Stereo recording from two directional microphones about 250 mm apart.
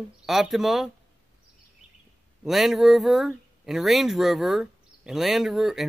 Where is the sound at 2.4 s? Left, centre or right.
Centre.